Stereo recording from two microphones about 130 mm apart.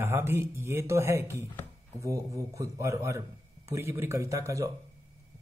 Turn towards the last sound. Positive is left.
turn(degrees=-25)  # may be behind; listen again after turning